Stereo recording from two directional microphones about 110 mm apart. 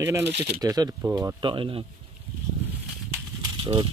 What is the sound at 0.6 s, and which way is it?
Speech, 35° right (ahead or behind).